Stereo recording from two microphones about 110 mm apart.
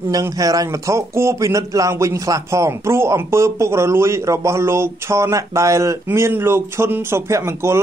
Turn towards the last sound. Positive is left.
turn(degrees=-25)  # may be behind; listen again after turning